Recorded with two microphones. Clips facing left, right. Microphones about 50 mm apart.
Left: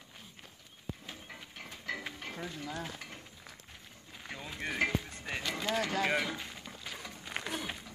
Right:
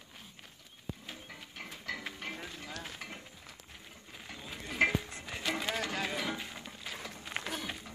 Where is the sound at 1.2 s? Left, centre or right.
Centre.